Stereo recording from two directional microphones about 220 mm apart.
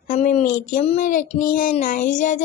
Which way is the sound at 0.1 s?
35° left (ahead or behind).